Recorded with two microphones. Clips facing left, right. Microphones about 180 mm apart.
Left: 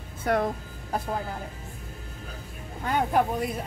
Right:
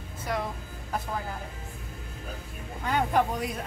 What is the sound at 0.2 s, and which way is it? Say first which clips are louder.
Speech: left 7 dB; 55° left (ahead or behind).